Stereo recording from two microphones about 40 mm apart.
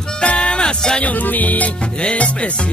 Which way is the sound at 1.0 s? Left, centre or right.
Left.